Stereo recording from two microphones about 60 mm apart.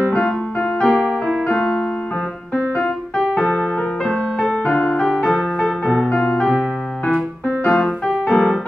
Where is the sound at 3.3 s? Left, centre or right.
Centre.